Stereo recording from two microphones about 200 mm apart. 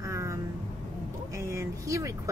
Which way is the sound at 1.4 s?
15° right (ahead or behind).